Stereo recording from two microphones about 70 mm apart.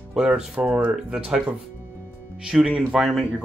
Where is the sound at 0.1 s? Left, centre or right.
Centre.